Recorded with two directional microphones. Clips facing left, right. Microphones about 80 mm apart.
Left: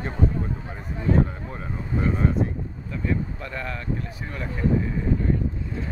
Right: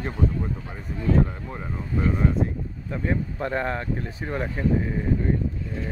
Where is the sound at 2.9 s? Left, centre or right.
Right.